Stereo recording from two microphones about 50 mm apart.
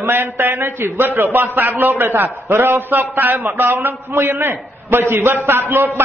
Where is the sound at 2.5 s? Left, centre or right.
Right.